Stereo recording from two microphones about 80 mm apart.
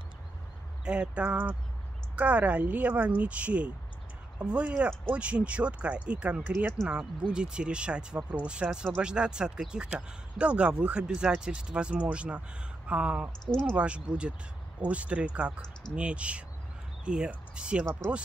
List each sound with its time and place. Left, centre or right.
0.8 s speech: centre
6.4 s speech: right
6.9 s speech: centre
13.5 s speech: centre
13.7 s speech: centre